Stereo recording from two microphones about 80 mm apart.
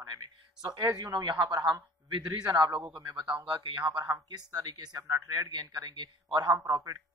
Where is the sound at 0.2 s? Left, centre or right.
Right.